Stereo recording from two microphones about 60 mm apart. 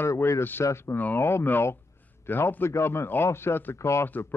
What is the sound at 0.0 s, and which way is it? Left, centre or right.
Speech, left.